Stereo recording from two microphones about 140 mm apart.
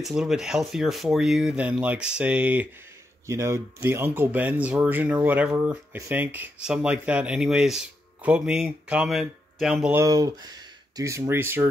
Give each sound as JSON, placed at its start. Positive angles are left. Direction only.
{"t": 0.0, "sound": "speech", "side_deg": -5}
{"t": 9.9, "sound": "speech", "side_deg": -25}